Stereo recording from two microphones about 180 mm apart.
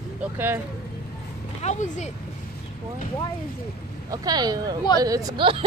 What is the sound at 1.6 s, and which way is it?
Speech, 40° left (ahead or behind).